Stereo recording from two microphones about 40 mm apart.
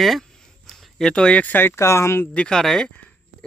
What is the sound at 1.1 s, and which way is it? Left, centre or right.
Speech, left.